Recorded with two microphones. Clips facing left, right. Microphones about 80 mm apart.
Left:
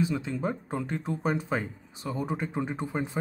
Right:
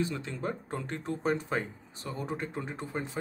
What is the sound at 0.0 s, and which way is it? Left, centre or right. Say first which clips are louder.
Speech: left 4 dB; centre.